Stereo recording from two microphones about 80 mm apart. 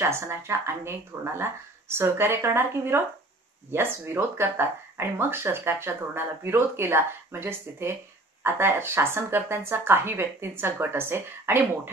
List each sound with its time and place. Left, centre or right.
0.0 s speech: right